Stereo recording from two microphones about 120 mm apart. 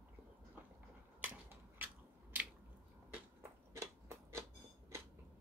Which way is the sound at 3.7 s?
25° right (ahead or behind).